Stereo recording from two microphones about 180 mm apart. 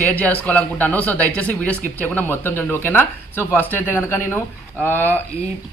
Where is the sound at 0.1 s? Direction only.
5° left (ahead or behind).